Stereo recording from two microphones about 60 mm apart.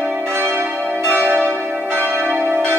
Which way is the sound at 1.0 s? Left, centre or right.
Right.